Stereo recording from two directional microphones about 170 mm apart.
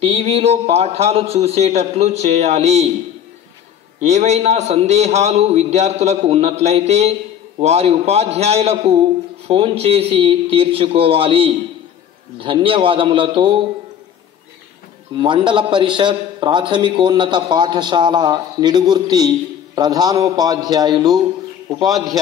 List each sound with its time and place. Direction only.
0.0 s a man's voice: 35° right (ahead or behind)
4.0 s a man's voice: 40° right (ahead or behind)
15.1 s a man's voice: 30° right (ahead or behind)